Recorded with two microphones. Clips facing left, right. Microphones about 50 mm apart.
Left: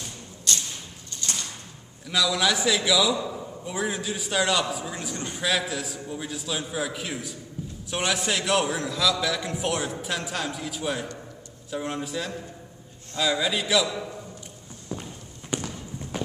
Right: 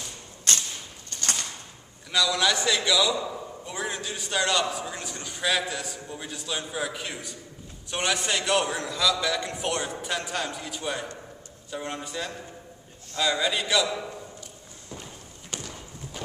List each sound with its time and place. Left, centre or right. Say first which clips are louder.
0.5 s a sound: right 1 dB; right
2.0 s a man's voice: even; centre
15.5 s run: left 8 dB; centre